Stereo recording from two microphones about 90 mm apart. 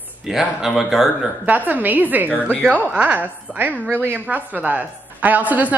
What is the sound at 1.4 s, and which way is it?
A woman's voice, 20° right (ahead or behind).